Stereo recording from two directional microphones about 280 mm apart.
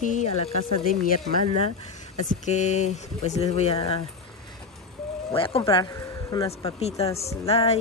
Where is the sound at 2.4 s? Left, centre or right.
Left.